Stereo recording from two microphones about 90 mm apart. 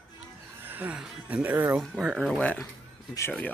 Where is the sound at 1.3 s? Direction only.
20° right (ahead or behind).